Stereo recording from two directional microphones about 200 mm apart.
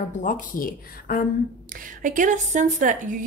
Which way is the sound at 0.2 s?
40° left (ahead or behind).